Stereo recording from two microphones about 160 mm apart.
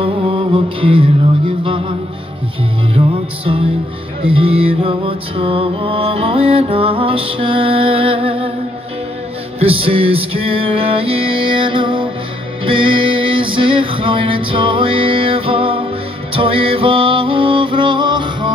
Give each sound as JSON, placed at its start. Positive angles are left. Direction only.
{"t": 0.0, "sound": "mantra", "side_deg": -35}
{"t": 3.0, "sound": "music", "side_deg": -30}
{"t": 4.3, "sound": "music", "side_deg": -35}
{"t": 9.6, "sound": "music", "side_deg": -35}